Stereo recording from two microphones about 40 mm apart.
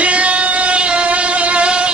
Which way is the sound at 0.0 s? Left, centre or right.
Right.